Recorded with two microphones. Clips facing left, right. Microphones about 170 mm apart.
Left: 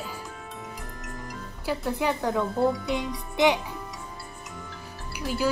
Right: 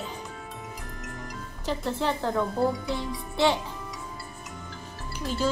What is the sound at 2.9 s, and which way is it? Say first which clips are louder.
Speech: left 2 dB; 15° left (ahead or behind).